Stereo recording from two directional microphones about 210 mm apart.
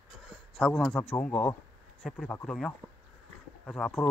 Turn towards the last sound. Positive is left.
turn(degrees=5)  # may be behind; listen again after turning